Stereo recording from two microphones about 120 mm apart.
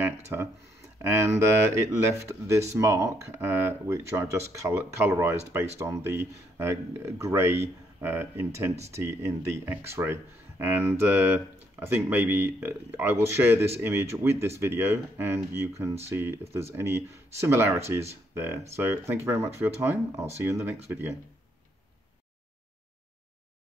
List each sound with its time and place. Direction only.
0.3 s speech: 20° right (ahead or behind)